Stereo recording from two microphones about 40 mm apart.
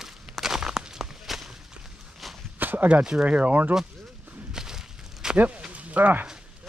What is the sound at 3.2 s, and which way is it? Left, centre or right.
Speech, right.